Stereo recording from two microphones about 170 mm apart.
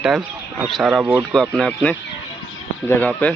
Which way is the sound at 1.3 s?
Centre (ahead or behind).